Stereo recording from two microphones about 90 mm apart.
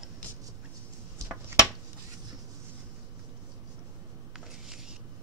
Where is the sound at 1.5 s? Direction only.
25° right (ahead or behind).